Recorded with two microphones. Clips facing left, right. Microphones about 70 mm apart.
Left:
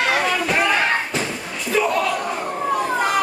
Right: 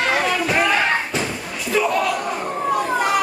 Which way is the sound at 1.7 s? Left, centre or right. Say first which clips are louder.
Even; centre.